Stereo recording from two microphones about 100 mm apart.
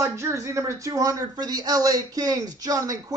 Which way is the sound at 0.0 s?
30° right (ahead or behind).